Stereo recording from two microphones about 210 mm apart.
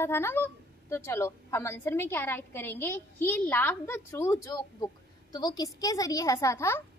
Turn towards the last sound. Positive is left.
turn(degrees=10)  # may be behind; listen again after turning